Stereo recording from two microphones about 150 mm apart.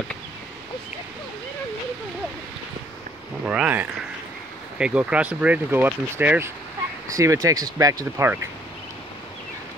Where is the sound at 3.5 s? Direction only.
10° right (ahead or behind).